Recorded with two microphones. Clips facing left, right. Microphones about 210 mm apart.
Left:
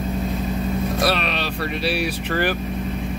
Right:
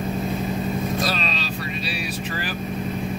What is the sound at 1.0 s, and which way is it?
Speech, 65° left (ahead or behind).